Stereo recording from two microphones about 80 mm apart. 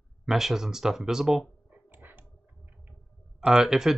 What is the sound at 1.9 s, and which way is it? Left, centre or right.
Dog, right.